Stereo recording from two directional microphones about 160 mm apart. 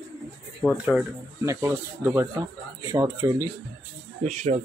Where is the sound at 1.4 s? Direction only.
20° right (ahead or behind).